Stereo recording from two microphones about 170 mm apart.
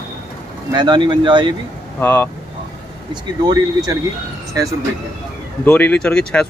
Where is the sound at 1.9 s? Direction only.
10° left (ahead or behind).